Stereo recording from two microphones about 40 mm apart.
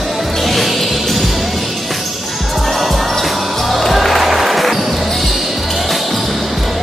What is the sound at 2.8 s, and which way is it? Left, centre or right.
Music, centre.